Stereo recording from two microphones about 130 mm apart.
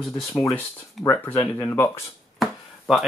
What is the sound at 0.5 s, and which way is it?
Speech, 20° left (ahead or behind).